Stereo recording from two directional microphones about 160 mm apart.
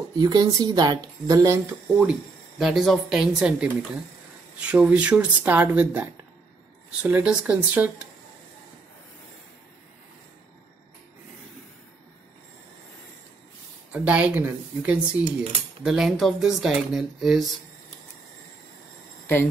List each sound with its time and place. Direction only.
0.2 s speech: 25° right (ahead or behind)
2.6 s speech: centre (ahead or behind)
13.9 s speech: 10° right (ahead or behind)